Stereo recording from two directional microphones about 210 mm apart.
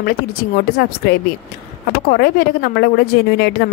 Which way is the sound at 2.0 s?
45° left (ahead or behind).